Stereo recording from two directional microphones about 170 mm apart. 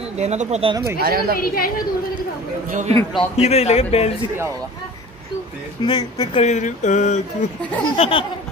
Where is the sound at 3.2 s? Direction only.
35° left (ahead or behind).